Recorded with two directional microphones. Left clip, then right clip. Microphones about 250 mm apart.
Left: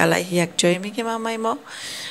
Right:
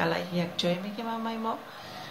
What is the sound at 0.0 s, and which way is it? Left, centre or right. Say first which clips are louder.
Speech: left 10 dB; left.